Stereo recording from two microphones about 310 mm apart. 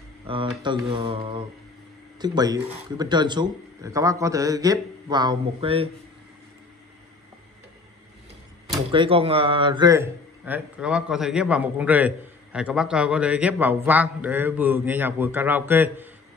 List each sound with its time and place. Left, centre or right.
0.3 s speech: centre
8.7 s a man's voice: centre